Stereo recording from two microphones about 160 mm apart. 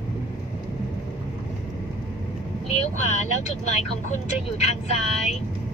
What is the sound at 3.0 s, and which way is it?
Vehicle, 45° left (ahead or behind).